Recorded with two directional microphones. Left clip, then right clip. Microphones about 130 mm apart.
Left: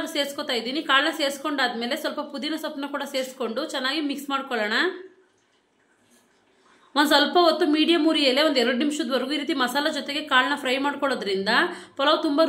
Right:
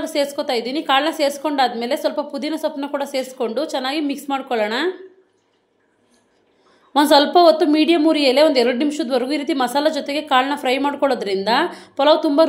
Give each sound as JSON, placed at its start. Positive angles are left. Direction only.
{"t": 0.0, "sound": "a woman's voice", "side_deg": -25}
{"t": 6.9, "sound": "a woman's voice", "side_deg": -25}